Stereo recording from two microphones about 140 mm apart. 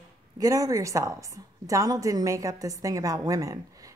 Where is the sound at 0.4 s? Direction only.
25° right (ahead or behind).